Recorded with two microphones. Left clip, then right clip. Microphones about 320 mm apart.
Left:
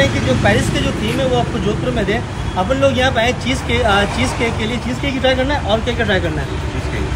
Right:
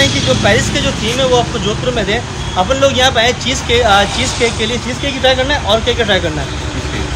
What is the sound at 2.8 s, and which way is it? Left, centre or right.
Speech, centre.